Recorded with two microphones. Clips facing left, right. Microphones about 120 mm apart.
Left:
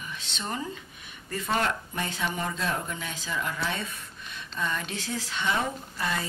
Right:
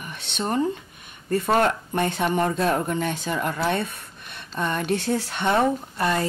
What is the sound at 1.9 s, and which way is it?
Speech, 60° right (ahead or behind).